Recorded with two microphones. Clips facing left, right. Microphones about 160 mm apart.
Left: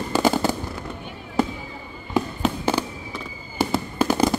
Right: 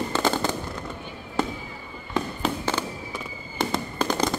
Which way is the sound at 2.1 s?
10° left (ahead or behind).